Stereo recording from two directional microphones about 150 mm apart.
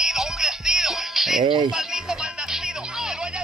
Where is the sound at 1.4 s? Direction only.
30° right (ahead or behind).